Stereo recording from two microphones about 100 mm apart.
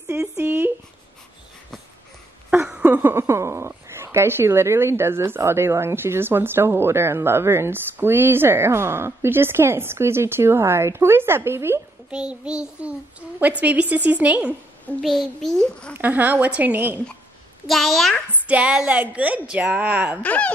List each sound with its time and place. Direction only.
0.4 s speech: 20° right (ahead or behind)
2.8 s speech: 20° right (ahead or behind)
12.1 s a woman's voice: 10° right (ahead or behind)
15.0 s a child's voice: centre (ahead or behind)
15.9 s a woman's voice: 15° right (ahead or behind)
17.6 s a child's voice: centre (ahead or behind)
18.3 s a woman's voice: 15° right (ahead or behind)
20.2 s speech: 15° left (ahead or behind)